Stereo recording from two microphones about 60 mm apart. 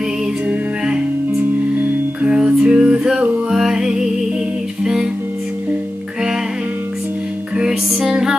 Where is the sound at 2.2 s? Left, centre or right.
Centre.